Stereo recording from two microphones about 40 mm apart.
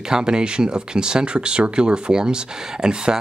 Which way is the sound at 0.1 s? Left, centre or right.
Right.